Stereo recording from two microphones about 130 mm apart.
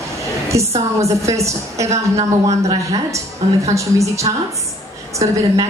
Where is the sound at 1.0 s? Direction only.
25° right (ahead or behind).